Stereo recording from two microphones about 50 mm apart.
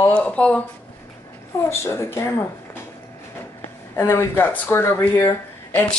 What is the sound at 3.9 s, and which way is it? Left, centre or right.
Speech, left.